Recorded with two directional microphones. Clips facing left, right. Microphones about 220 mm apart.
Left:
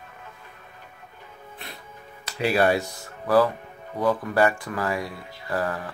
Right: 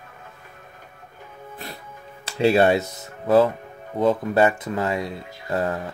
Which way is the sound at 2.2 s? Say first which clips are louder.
Right 4 dB; 25° right (ahead or behind).